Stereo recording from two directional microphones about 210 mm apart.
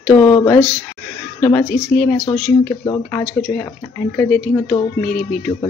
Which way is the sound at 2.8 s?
20° left (ahead or behind).